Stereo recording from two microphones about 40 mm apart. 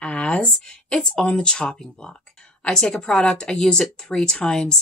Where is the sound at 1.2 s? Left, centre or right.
Left.